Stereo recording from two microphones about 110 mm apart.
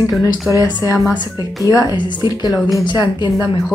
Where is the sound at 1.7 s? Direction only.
40° left (ahead or behind).